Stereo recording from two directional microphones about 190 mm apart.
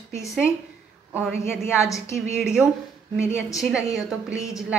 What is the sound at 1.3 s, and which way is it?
Speech, 10° left (ahead or behind).